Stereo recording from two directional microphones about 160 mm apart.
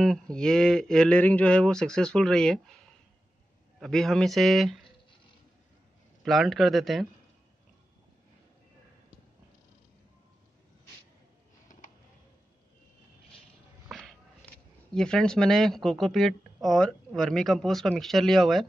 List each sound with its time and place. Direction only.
0.0 s speech: 5° left (ahead or behind)
3.8 s speech: centre (ahead or behind)
6.2 s speech: centre (ahead or behind)
13.8 s a sound: centre (ahead or behind)
15.0 s speech: 5° left (ahead or behind)